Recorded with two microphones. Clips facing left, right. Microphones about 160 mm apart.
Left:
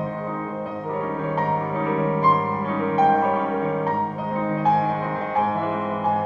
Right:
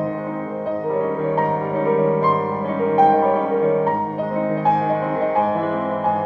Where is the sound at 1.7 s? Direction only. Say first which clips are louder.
Right 8 dB; 45° right (ahead or behind).